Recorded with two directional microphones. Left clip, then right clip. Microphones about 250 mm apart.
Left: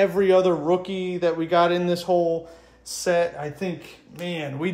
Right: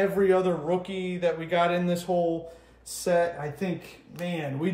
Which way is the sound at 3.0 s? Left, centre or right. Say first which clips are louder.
Left 3 dB; centre.